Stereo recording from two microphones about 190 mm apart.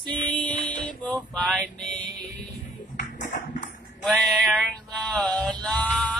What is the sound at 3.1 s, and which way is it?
Music, 40° left (ahead or behind).